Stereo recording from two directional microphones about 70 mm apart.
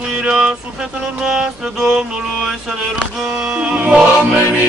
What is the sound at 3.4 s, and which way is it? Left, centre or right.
Music, centre.